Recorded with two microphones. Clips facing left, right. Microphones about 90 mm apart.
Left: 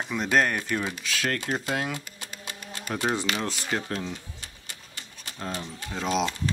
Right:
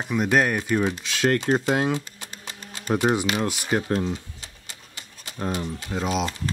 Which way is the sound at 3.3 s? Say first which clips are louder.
Right 5 dB; 15° right (ahead or behind).